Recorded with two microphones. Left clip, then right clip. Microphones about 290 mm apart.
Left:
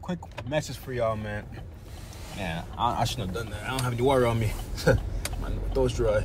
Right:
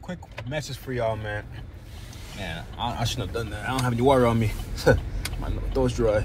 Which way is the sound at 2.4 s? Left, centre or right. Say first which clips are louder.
Left 3 dB; centre.